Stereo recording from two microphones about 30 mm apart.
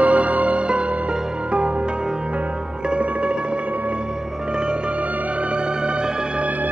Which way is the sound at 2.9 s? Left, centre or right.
Right.